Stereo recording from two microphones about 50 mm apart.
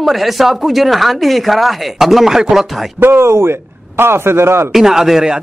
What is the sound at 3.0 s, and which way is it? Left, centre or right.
A man's voice, right.